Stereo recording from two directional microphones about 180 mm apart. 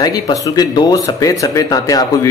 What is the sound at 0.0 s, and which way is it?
Speech, 20° left (ahead or behind).